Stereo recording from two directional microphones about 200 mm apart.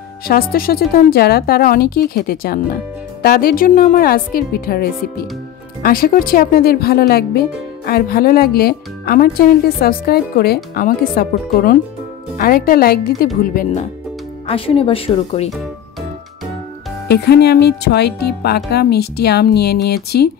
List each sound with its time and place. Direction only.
0.3 s speech: 45° left (ahead or behind)
14.5 s speech: 30° left (ahead or behind)
17.1 s speech: 55° left (ahead or behind)